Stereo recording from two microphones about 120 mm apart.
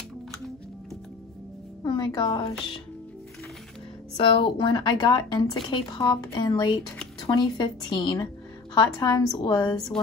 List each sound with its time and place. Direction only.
1.9 s speech: 35° left (ahead or behind)
4.2 s speech: 45° left (ahead or behind); by 9.9 s 30° left (ahead or behind)